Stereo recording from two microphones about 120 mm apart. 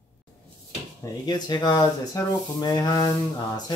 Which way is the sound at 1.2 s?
35° left (ahead or behind).